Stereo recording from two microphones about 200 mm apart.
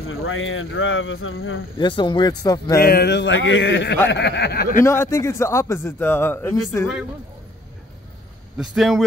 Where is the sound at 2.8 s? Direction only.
50° left (ahead or behind).